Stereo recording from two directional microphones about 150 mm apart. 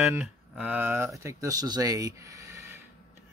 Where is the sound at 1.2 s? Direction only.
25° right (ahead or behind).